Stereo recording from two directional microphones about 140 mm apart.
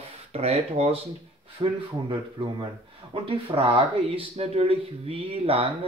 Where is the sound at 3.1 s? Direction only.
40° right (ahead or behind).